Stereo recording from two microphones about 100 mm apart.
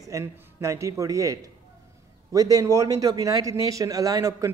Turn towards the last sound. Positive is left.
turn(degrees=-35)  # may be behind; listen again after turning